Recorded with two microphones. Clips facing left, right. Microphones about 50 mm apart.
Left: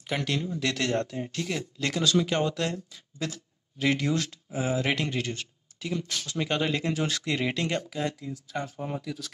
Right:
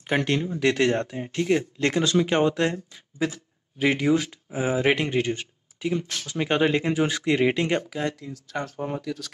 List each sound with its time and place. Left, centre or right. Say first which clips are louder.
0.0 s speech: right 6 dB; right
7.9 s speech: right 2 dB; centre
8.7 s speech: right 4 dB; centre
9.0 s speech: right 4 dB; centre